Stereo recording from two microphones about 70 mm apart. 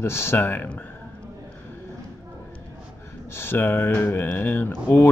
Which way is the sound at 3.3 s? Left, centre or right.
Left.